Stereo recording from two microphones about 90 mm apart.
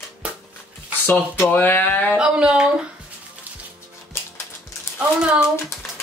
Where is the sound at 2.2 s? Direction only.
10° right (ahead or behind).